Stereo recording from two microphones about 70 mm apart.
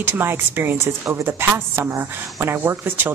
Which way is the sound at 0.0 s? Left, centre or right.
Right.